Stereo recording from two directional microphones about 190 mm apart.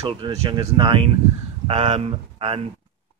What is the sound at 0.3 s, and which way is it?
Speech, 20° right (ahead or behind).